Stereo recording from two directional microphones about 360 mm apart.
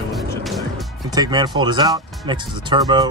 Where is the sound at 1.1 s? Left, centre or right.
Centre.